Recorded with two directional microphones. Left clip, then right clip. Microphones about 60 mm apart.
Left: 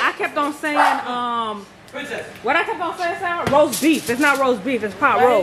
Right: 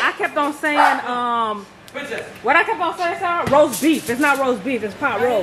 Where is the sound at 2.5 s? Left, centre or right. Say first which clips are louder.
Right 3 dB; centre.